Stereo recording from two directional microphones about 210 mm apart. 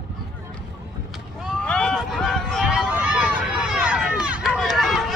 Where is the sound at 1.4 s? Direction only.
5° left (ahead or behind).